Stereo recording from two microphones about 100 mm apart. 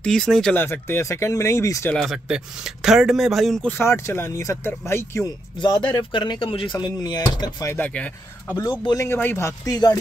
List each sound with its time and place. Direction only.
0.0 s speech: 5° left (ahead or behind)
0.6 s speech: 20° left (ahead or behind)
2.0 s speech: 5° right (ahead or behind)
3.6 s speech: 25° left (ahead or behind)
5.6 s speech: 50° left (ahead or behind)
7.7 s speech: 15° left (ahead or behind)
8.5 s speech: 40° left (ahead or behind)
9.0 s speech: 20° left (ahead or behind)
9.7 s speech: 40° left (ahead or behind)